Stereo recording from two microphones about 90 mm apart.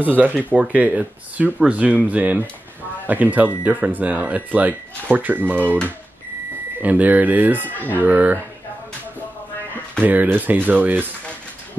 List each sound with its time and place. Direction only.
0.2 s speech: 15° right (ahead or behind)
6.8 s speech: 15° right (ahead or behind)
10.0 s speech: 20° right (ahead or behind)